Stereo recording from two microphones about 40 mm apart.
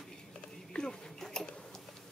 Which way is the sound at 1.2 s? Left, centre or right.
Centre.